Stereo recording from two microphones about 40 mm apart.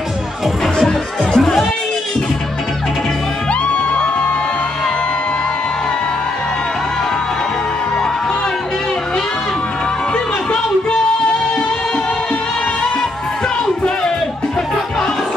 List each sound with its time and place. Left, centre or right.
0.7 s music: centre
3.6 s music: left